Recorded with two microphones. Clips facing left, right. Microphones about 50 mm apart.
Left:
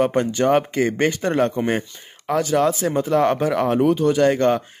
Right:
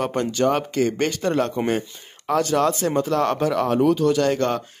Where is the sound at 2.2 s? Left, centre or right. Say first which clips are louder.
Left 1 dB; centre.